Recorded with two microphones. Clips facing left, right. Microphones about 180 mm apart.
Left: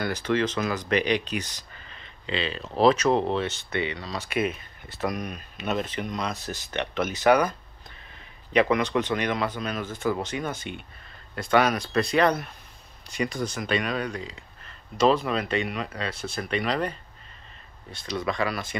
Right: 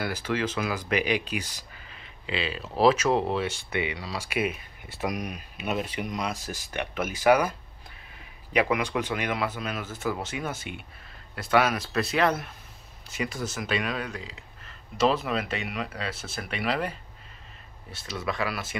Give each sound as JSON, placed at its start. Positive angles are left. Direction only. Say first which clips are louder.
{"t": 0.0, "sound": "speech", "louder": "left 3 dB", "side_deg": -5}
{"t": 6.3, "sound": "speech", "louder": "left 2 dB", "side_deg": 65}
{"t": 6.7, "sound": "speech", "louder": "left 3 dB", "side_deg": -10}
{"t": 8.5, "sound": "speech", "louder": "left 3 dB", "side_deg": -10}